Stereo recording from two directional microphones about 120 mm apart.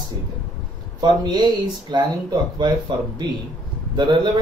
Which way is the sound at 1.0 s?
35° right (ahead or behind).